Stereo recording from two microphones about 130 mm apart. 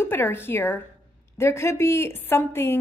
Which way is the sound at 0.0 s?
15° left (ahead or behind).